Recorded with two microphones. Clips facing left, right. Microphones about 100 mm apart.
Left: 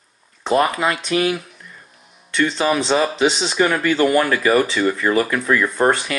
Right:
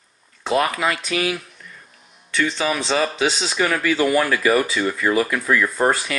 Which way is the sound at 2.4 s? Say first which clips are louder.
Left 4 dB; centre (ahead or behind).